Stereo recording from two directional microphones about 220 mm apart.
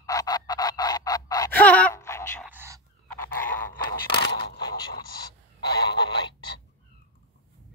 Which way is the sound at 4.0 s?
45° left (ahead or behind).